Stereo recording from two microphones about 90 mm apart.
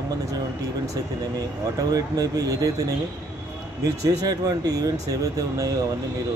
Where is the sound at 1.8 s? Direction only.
40° right (ahead or behind).